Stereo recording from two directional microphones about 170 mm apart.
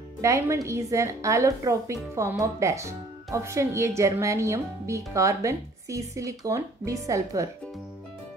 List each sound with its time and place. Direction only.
0.2 s speech: 15° right (ahead or behind)